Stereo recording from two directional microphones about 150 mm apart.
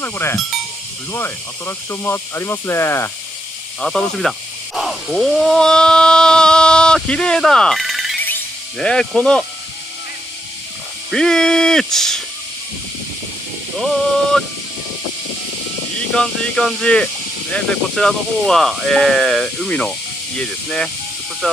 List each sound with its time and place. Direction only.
0.0 s speech: 15° left (ahead or behind)
3.8 s speech: 5° left (ahead or behind)
11.1 s speech: 5° left (ahead or behind)
13.7 s speech: 5° left (ahead or behind)
16.2 s speech: 5° left (ahead or behind)